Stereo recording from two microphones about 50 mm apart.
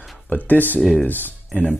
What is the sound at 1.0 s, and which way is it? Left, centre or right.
Speech, left.